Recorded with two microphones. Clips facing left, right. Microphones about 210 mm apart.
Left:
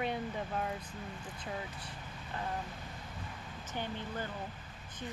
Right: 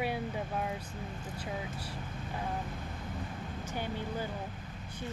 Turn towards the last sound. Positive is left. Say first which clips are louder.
# right 3 dB
turn(degrees=-10)  # may be behind; listen again after turning